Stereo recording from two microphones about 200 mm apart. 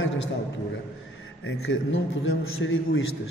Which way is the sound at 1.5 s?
75° left (ahead or behind).